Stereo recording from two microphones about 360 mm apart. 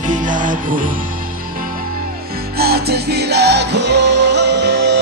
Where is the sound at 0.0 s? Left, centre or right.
Right.